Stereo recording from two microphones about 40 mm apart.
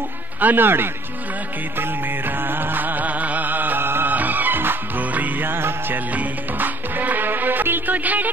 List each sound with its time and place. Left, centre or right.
0.4 s a man's voice: right
1.8 s music: right
4.1 s music: right
5.4 s music: right
6.1 s music: right